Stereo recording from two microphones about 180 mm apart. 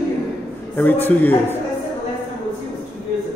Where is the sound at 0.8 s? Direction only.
10° left (ahead or behind).